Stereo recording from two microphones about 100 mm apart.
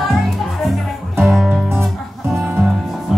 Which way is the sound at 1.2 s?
Centre (ahead or behind).